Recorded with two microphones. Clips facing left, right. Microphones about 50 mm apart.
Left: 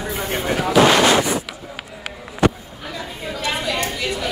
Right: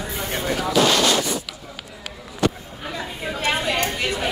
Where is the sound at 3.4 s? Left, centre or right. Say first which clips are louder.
Right 1 dB; right.